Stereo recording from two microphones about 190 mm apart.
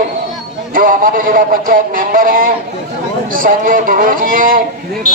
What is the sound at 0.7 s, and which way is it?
A man's voice, 50° right (ahead or behind).